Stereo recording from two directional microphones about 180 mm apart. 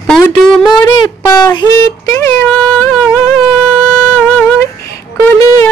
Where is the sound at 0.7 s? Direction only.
20° left (ahead or behind).